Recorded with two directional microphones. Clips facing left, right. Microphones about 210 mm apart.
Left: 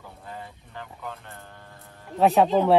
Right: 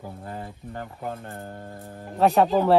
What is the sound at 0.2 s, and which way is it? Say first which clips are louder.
Speech: right 5 dB; 50° right (ahead or behind).